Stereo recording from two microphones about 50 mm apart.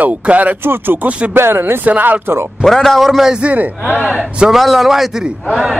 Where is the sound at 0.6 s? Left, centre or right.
Right.